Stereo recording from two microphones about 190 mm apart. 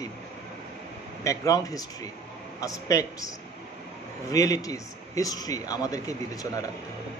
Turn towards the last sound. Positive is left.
turn(degrees=20)  # may be behind; listen again after turning